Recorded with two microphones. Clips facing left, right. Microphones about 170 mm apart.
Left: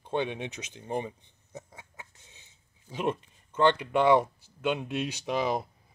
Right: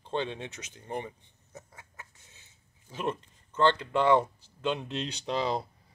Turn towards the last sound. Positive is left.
turn(degrees=15)  # may be behind; listen again after turning